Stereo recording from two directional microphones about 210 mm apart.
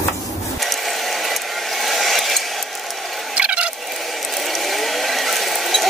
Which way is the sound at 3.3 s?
5° right (ahead or behind).